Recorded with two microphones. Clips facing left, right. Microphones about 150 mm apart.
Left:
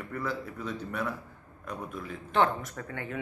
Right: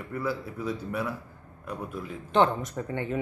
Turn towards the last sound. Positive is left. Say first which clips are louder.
# right 7 dB
turn(degrees=-25)  # may be behind; listen again after turning